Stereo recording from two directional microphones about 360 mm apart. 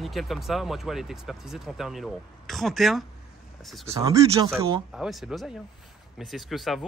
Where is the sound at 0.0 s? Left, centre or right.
Centre.